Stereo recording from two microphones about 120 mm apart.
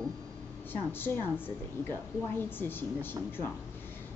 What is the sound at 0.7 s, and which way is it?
Speech, 15° left (ahead or behind).